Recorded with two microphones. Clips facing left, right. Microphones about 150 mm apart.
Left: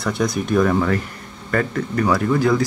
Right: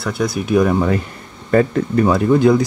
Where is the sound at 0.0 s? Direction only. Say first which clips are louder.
Right 1 dB; centre (ahead or behind).